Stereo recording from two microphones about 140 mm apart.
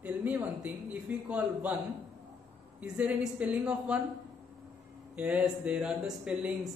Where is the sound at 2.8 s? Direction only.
5° right (ahead or behind).